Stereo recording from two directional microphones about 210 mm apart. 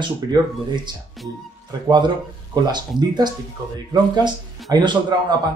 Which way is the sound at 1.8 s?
20° right (ahead or behind).